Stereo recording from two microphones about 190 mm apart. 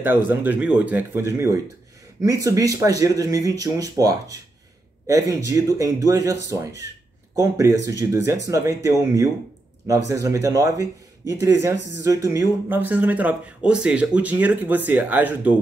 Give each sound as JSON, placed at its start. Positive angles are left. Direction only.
{"t": 0.0, "sound": "speech", "side_deg": -10}